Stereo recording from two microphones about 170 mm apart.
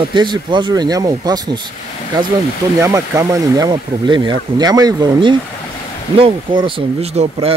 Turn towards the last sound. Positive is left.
turn(degrees=-35)  # may be behind; listen again after turning